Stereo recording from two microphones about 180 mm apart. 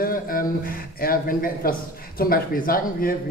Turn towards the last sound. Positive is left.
turn(degrees=55)  # may be behind; listen again after turning